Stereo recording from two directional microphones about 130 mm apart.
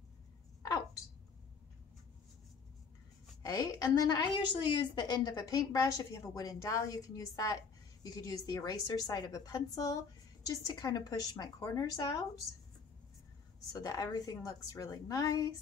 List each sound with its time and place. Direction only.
0.6 s a sound: 25° left (ahead or behind)
3.4 s a woman's voice: 25° left (ahead or behind)
13.8 s a woman's voice: 30° left (ahead or behind)